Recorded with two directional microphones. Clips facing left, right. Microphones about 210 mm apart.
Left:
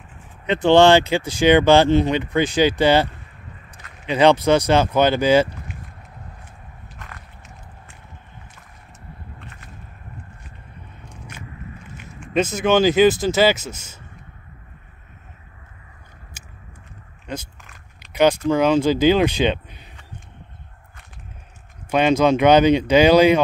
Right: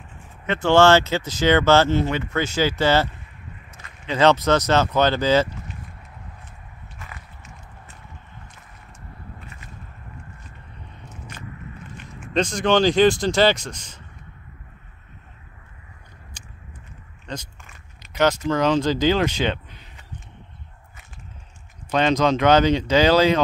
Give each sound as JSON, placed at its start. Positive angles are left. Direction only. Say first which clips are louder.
{"t": 0.5, "sound": "speech", "louder": "left 3 dB", "side_deg": 15}
{"t": 7.0, "sound": "biting", "louder": "even", "side_deg": -5}
{"t": 12.2, "sound": "speech", "louder": "left 2 dB", "side_deg": 5}
{"t": 16.4, "sound": "biting", "louder": "even", "side_deg": 10}
{"t": 17.3, "sound": "a sound", "louder": "left 3 dB", "side_deg": 0}
{"t": 18.1, "sound": "speech", "louder": "left 4 dB", "side_deg": 10}
{"t": 21.9, "sound": "speech", "louder": "left 3 dB", "side_deg": 10}